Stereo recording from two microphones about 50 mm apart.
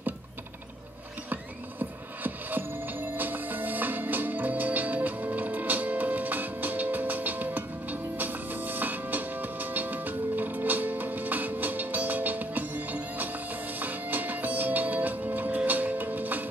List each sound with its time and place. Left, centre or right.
1.3 s music: right